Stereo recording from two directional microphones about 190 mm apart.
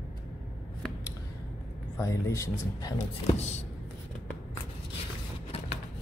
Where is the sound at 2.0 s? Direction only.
15° left (ahead or behind).